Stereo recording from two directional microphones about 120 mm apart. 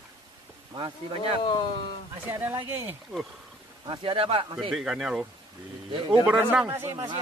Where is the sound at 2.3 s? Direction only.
20° right (ahead or behind).